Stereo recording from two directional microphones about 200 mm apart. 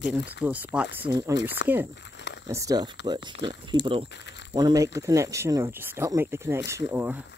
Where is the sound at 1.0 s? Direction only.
20° right (ahead or behind).